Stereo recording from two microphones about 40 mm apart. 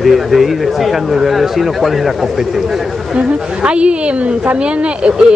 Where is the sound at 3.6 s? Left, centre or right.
Right.